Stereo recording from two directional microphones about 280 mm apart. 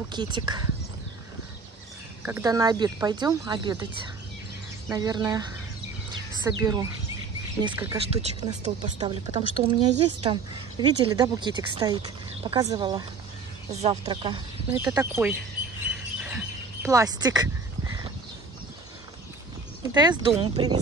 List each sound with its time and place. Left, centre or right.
0.1 s speech: centre
2.2 s speech: centre
4.8 s speech: centre
6.4 s speech: centre
8.6 s speech: right; by 15.3 s centre
16.2 s bird: centre
19.8 s speech: centre